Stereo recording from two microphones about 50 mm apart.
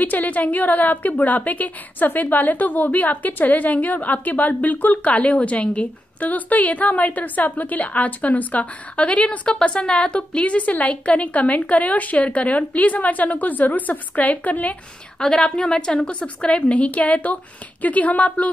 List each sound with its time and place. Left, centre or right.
0.0 s a woman's voice: left
15.1 s a woman's voice: centre; by 18.5 s left